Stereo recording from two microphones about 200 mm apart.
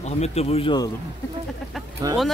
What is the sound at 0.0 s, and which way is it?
Speech, 30° left (ahead or behind).